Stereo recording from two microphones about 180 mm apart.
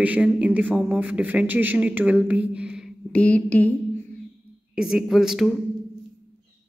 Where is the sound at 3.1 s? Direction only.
5° left (ahead or behind).